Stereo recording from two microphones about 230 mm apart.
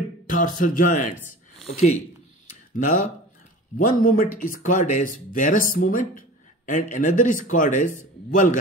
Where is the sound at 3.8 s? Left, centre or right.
Left.